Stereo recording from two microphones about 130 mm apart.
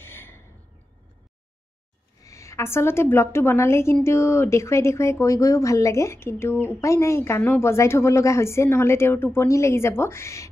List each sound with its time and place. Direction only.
0.0 s gasp: 20° left (ahead or behind)
2.2 s a woman's voice: 20° left (ahead or behind)